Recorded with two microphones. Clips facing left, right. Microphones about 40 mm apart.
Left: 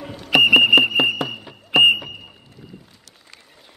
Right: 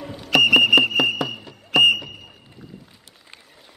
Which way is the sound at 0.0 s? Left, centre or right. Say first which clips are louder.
Left 2 dB; centre.